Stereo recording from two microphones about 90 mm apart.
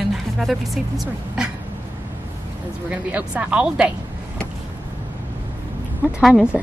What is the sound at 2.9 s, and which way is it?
Speech, 15° right (ahead or behind).